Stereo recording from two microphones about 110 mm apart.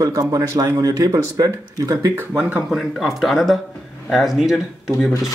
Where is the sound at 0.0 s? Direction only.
35° right (ahead or behind).